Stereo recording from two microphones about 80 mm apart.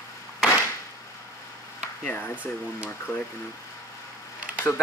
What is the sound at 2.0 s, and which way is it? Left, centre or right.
Speech, left.